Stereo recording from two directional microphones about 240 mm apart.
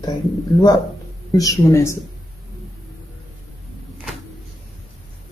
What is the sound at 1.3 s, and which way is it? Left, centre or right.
Speech, centre.